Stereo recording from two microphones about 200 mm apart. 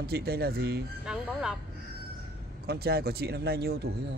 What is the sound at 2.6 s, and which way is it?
Speech, 50° right (ahead or behind).